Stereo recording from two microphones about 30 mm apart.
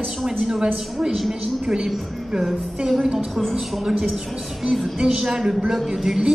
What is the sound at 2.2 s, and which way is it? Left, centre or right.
Music, centre.